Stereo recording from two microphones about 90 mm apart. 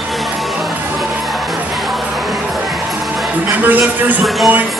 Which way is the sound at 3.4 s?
20° right (ahead or behind).